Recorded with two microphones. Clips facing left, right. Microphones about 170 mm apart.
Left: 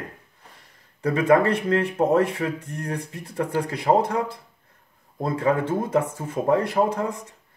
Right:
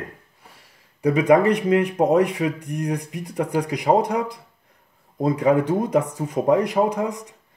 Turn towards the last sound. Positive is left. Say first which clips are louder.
# right 2 dB
turn(degrees=-15)  # may be behind; listen again after turning